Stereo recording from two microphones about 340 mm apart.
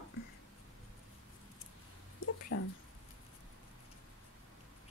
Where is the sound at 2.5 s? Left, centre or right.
Left.